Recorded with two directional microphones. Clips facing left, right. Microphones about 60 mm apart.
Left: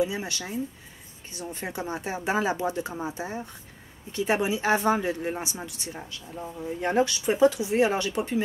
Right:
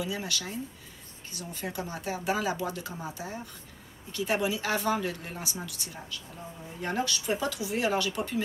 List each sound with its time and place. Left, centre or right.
0.0 s speech: left